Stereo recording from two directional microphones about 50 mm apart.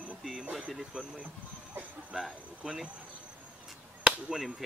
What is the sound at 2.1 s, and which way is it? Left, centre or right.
Speech, centre.